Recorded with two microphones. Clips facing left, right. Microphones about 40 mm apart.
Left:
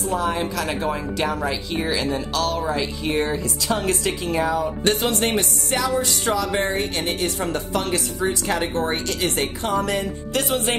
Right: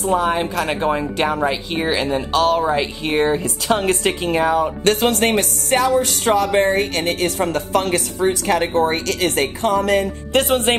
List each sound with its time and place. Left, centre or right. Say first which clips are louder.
0.1 s speech: right 5 dB; right